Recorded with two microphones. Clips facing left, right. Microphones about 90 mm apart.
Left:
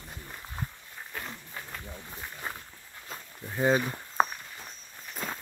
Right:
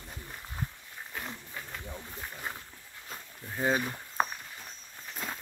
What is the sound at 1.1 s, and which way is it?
Wild animals, 5° right (ahead or behind).